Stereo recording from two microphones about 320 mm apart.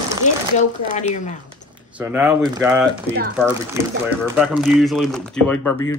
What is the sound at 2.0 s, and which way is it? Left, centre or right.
Speech, centre.